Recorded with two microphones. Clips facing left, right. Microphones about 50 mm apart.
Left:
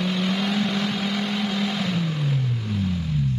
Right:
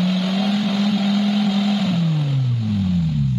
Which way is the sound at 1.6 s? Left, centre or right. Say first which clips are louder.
Right 5 dB; centre.